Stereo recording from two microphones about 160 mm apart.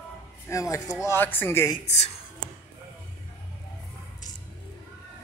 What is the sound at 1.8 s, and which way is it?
Speech, 45° left (ahead or behind).